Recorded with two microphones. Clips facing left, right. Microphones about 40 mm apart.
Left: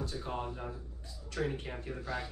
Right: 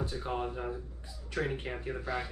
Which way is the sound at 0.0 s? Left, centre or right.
Right.